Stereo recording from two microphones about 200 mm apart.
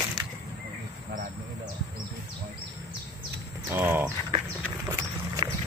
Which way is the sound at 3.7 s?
10° right (ahead or behind).